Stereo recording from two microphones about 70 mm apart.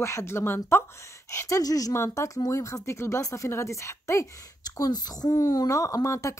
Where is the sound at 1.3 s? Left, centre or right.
Left.